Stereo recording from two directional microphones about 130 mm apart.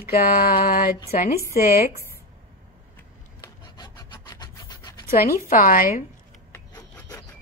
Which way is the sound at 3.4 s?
35° left (ahead or behind).